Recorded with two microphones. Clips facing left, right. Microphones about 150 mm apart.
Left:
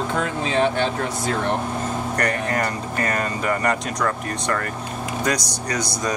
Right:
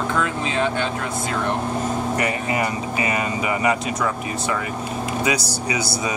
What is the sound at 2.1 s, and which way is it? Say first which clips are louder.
Speech: even; 5° right (ahead or behind).